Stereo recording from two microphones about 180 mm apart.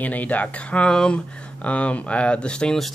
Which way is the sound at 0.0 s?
10° left (ahead or behind).